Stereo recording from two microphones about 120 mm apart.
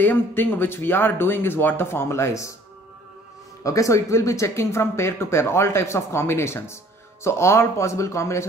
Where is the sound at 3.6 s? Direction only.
25° left (ahead or behind).